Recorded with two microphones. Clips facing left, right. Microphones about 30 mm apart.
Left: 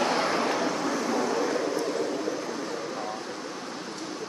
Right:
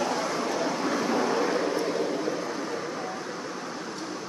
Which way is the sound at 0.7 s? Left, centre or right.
Centre.